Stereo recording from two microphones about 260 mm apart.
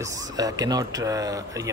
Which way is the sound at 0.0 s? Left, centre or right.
Centre.